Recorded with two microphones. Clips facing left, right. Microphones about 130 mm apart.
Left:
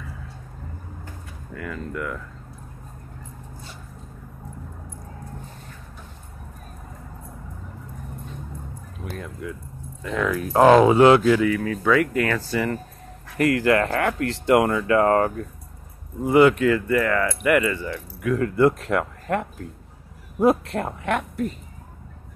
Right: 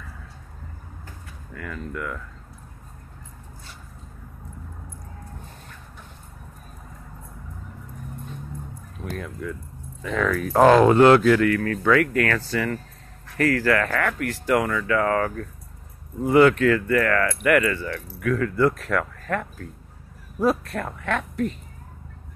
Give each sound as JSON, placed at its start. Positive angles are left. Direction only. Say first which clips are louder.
{"t": 1.5, "sound": "speech", "louder": "left 2 dB", "side_deg": 20}
{"t": 9.2, "sound": "speech", "louder": "right 1 dB", "side_deg": 5}
{"t": 16.3, "sound": "speech", "louder": "even", "side_deg": 15}